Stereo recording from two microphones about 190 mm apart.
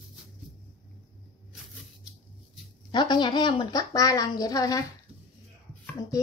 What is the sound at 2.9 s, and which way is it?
A woman's voice, 25° left (ahead or behind).